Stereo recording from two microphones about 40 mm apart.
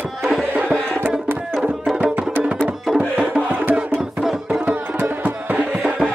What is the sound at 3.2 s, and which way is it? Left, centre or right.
Music, right.